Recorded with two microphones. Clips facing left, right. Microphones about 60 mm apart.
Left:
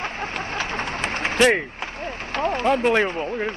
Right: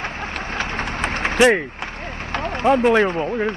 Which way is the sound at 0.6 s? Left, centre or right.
Right.